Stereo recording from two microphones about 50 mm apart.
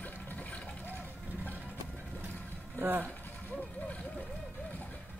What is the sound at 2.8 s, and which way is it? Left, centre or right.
Speech, right.